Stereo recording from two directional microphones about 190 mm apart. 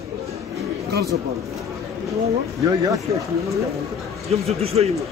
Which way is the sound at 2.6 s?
20° right (ahead or behind).